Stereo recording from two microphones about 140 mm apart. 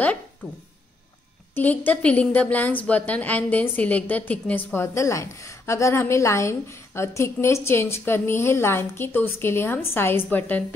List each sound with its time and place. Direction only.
1.5 s a woman's voice: 10° left (ahead or behind)